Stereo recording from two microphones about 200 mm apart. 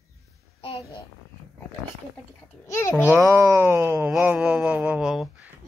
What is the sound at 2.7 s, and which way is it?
Speech, 15° left (ahead or behind).